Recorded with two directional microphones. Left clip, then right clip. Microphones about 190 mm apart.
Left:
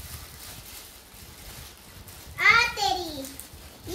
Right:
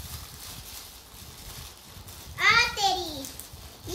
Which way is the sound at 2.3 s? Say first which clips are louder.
Left 2 dB; 30° right (ahead or behind).